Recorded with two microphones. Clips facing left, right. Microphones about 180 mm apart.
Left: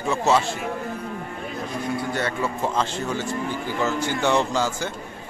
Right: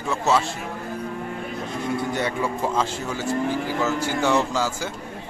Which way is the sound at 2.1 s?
15° right (ahead or behind).